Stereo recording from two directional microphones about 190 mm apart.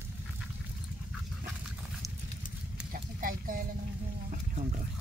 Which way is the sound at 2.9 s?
45° right (ahead or behind).